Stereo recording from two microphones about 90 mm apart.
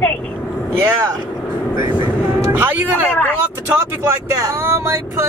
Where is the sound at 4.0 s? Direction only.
35° right (ahead or behind).